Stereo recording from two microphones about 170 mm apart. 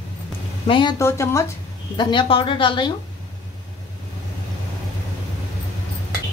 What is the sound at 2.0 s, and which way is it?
Speech, 25° left (ahead or behind).